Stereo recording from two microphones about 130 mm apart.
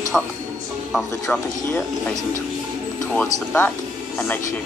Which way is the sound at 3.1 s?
5° left (ahead or behind).